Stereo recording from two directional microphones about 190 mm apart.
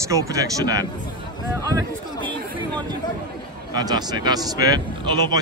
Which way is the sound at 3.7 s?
20° right (ahead or behind).